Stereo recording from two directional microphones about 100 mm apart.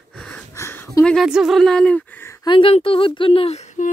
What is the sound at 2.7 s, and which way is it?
Speech, 65° left (ahead or behind).